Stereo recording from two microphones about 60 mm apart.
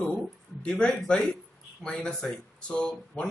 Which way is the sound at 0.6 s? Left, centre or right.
Centre.